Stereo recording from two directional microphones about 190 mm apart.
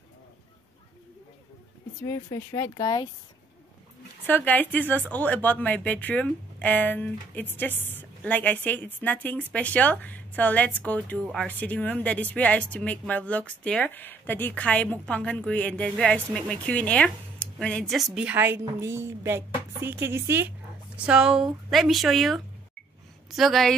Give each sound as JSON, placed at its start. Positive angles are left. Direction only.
{"t": 2.0, "sound": "speech", "side_deg": 15}
{"t": 4.3, "sound": "a woman's voice", "side_deg": 10}